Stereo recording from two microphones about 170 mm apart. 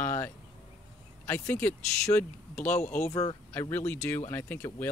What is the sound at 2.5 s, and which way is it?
Speech, 45° left (ahead or behind).